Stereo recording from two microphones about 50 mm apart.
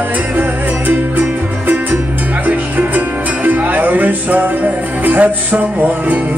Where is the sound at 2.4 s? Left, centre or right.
Right.